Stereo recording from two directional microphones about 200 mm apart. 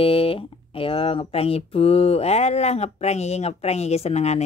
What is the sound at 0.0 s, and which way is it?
Speech, 25° left (ahead or behind).